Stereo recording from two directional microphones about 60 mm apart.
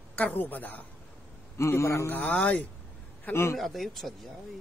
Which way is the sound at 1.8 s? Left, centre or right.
Left.